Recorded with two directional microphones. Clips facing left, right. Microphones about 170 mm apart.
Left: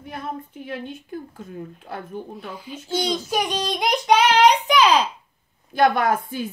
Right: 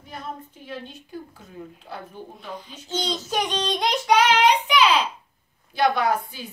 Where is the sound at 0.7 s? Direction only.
55° left (ahead or behind).